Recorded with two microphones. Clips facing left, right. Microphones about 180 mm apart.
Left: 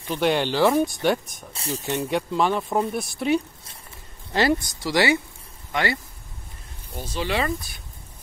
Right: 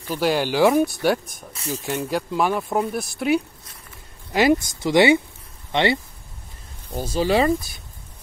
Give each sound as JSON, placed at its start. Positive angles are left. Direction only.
{"t": 0.1, "sound": "speech", "side_deg": -5}
{"t": 4.3, "sound": "speech", "side_deg": -15}
{"t": 7.0, "sound": "speech", "side_deg": -40}